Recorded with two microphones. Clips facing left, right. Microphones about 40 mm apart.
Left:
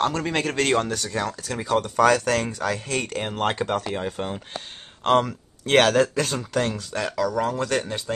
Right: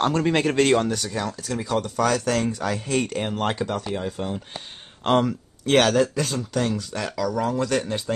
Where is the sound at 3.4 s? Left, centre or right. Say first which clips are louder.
Left 4 dB; left.